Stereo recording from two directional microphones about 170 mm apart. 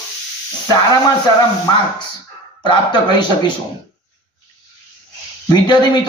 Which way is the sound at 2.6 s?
25° left (ahead or behind).